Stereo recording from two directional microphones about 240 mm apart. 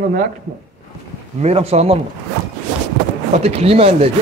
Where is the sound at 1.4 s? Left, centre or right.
Right.